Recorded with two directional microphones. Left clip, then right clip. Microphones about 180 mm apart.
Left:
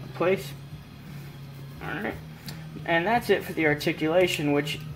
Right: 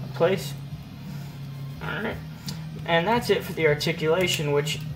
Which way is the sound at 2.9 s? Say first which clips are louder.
Right 1 dB; 40° left (ahead or behind).